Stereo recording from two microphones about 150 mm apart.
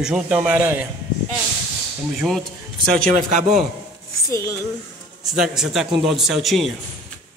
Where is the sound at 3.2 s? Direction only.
55° right (ahead or behind).